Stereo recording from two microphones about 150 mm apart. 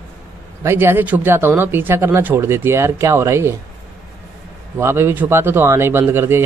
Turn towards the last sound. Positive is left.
turn(degrees=-15)  # may be behind; listen again after turning